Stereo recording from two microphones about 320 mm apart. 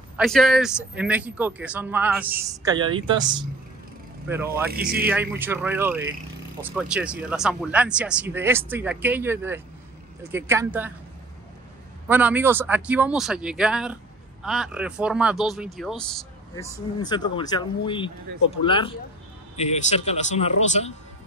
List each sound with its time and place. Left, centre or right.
0.2 s speech: centre
5.0 s a man's voice: centre
12.1 s a man's voice: centre